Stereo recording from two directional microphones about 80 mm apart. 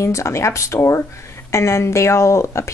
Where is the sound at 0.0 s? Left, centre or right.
Left.